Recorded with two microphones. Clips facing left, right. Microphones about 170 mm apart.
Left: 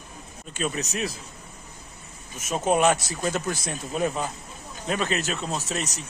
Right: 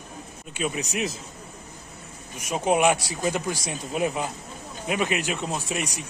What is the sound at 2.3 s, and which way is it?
Speech, 15° right (ahead or behind).